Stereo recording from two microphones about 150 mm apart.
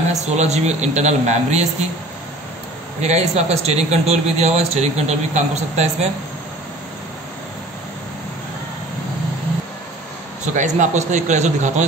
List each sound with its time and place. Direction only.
0.1 s a man's voice: 50° right (ahead or behind)
3.0 s a man's voice: 50° right (ahead or behind)
10.5 s a man's voice: 55° right (ahead or behind)